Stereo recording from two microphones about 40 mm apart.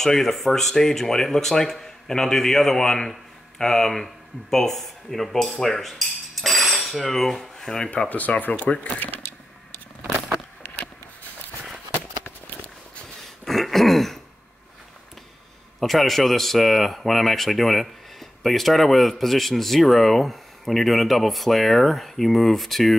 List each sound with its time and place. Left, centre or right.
0.0 s speech: centre
8.1 s speech: left
13.5 s throat clearing: centre
15.8 s speech: centre